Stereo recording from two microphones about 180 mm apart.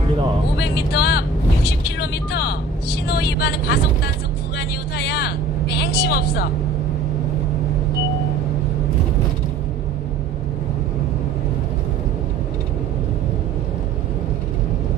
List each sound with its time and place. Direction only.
0.6 s speech: 65° left (ahead or behind)
4.6 s vehicle: 65° left (ahead or behind)